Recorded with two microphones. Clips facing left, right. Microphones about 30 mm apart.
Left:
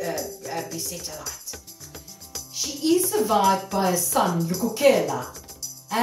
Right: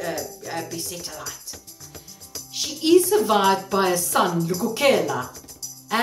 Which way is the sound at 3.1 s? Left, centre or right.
Right.